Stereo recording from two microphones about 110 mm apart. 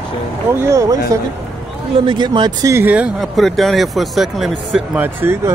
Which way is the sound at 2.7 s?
15° right (ahead or behind).